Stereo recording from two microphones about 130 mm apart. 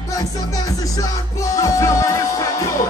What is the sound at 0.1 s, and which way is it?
Music, 25° left (ahead or behind).